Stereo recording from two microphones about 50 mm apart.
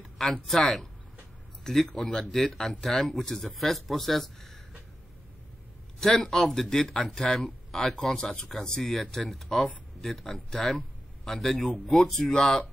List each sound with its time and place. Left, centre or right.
0.2 s speech: centre
5.9 s speech: centre